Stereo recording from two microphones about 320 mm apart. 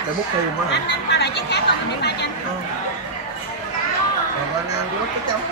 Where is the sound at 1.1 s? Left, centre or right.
Left.